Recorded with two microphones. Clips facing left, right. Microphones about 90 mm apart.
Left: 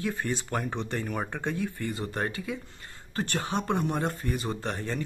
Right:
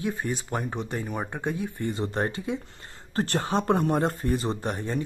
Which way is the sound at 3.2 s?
35° right (ahead or behind).